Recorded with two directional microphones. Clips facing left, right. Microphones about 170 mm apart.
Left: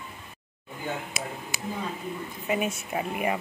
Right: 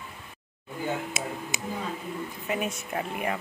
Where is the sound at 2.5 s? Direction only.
5° left (ahead or behind).